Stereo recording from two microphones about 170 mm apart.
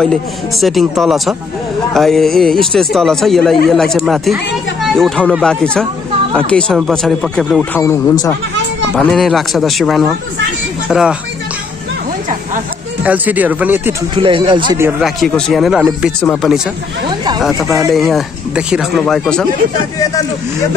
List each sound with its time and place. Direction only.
0.0 s speech: centre (ahead or behind)
7.8 s speech: 15° left (ahead or behind)
9.0 s speech: centre (ahead or behind)
13.0 s speech: 10° right (ahead or behind)
14.1 s speech: 30° right (ahead or behind)
14.8 s speech: 5° right (ahead or behind)
17.9 s speech: centre (ahead or behind)